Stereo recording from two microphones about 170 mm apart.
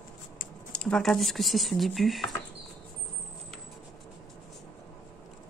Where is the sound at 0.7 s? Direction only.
5° left (ahead or behind).